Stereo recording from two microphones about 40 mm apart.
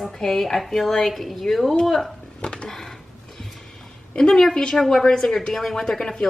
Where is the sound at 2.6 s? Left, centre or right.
Centre.